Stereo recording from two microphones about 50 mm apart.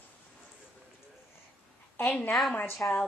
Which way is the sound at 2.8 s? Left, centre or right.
Left.